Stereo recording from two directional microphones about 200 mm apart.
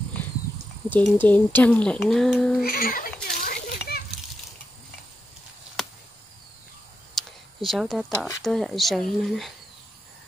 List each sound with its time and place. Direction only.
0.8 s speech: 10° left (ahead or behind)
2.6 s speech: 45° left (ahead or behind)
3.4 s children playing: 50° left (ahead or behind)
5.8 s chop: centre (ahead or behind)
7.2 s a sound: centre (ahead or behind)
8.5 s speech: centre (ahead or behind)